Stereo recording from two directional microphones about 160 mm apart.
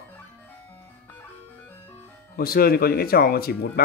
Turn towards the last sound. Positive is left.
turn(degrees=75)  # may be behind; listen again after turning